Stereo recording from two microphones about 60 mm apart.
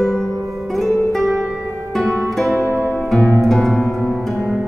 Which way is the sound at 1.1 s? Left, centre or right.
Centre.